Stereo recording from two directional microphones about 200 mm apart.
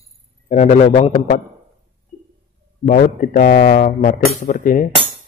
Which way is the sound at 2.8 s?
40° left (ahead or behind).